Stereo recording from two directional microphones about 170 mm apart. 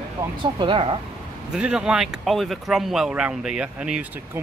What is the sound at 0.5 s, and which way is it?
Speech, 30° right (ahead or behind).